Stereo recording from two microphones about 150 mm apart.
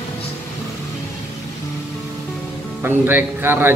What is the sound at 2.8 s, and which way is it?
Speech, 10° right (ahead or behind).